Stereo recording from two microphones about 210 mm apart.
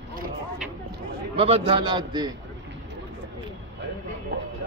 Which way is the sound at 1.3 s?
25° right (ahead or behind).